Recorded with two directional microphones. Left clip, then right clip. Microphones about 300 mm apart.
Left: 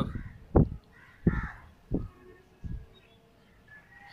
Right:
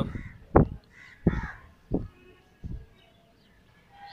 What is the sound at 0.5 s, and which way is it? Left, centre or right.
Crow, right.